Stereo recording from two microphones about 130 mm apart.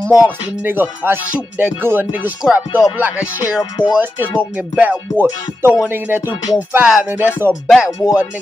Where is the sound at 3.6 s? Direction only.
35° left (ahead or behind).